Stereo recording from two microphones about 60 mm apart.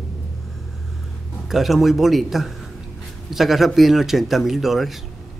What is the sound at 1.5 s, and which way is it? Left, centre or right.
Speech, centre.